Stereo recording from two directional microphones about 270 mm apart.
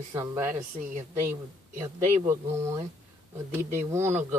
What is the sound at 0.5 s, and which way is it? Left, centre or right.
Speech, right.